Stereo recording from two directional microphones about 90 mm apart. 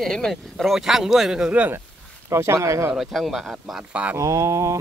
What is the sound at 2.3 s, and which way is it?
Mantra, 30° right (ahead or behind).